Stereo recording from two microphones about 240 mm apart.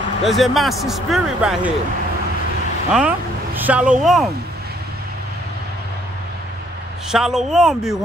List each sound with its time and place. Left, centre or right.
0.2 s speech: centre
2.9 s speech: centre
7.1 s speech: centre